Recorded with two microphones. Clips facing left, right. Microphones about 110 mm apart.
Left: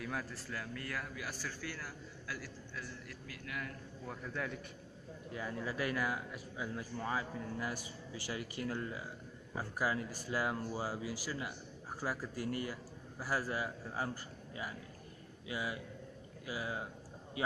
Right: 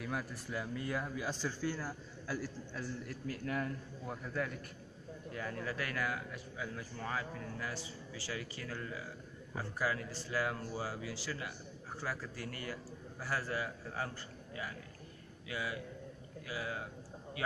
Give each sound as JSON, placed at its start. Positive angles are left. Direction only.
{"t": 0.0, "sound": "a man's voice", "side_deg": -10}
{"t": 4.1, "sound": "a man's voice", "side_deg": -5}
{"t": 5.3, "sound": "a man's voice", "side_deg": 10}